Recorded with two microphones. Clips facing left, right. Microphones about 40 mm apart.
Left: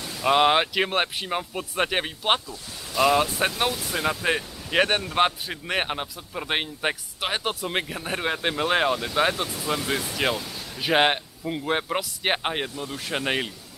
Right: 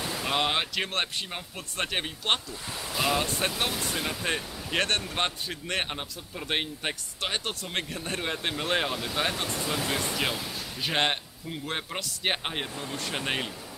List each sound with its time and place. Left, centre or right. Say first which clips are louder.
0.2 s speech: left 9 dB; centre
9.3 s speech: left 3 dB; centre